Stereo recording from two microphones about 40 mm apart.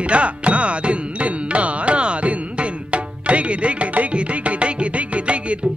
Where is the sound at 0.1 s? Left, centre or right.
Right.